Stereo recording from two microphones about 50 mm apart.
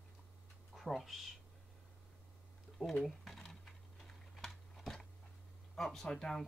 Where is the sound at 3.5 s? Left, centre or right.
Centre.